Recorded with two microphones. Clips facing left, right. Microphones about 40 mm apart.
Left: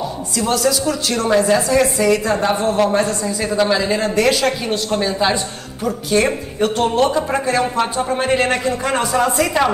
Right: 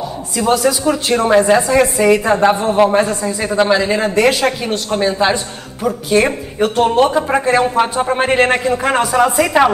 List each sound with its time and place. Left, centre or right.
0.4 s a woman's voice: right
7.2 s a woman's voice: right